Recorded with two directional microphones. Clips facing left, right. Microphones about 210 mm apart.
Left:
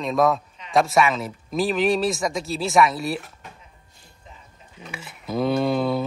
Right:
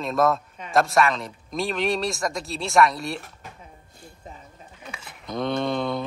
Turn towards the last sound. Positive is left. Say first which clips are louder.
# left 4 dB
turn(degrees=5)  # may be behind; listen again after turning